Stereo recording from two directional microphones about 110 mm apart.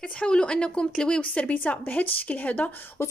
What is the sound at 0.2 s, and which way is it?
A woman's voice, 10° left (ahead or behind).